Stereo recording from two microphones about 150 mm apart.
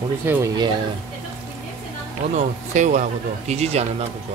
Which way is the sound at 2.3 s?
50° right (ahead or behind).